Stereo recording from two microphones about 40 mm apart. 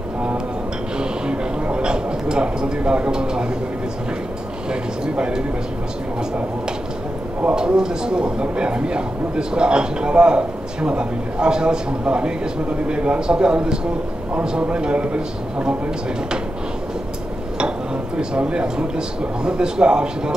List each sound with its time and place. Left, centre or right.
0.9 s a sound: right
4.6 s speech: right
7.5 s speech: centre
17.6 s speech: right